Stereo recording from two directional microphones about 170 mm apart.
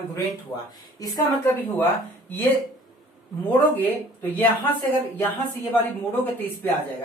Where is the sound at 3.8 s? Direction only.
10° left (ahead or behind).